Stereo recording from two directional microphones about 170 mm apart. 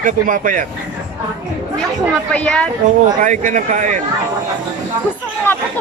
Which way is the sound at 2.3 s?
5° left (ahead or behind).